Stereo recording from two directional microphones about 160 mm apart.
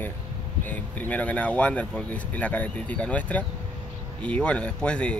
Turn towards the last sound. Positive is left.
turn(degrees=5)  # may be behind; listen again after turning